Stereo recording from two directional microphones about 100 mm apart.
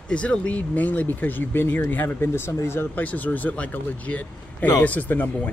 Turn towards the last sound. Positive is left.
turn(degrees=15)  # may be behind; listen again after turning